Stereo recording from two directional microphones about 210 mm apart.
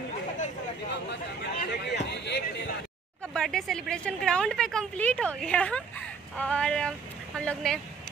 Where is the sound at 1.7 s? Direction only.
55° left (ahead or behind).